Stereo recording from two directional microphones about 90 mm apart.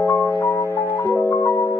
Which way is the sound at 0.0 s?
25° left (ahead or behind).